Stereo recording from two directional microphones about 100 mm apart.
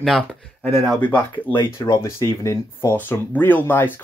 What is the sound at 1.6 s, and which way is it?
Speech, 25° left (ahead or behind).